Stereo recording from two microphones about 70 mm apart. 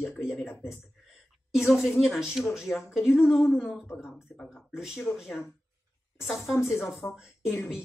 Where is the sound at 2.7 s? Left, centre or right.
Left.